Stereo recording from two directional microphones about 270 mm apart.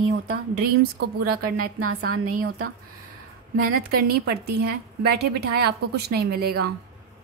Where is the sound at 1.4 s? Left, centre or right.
Right.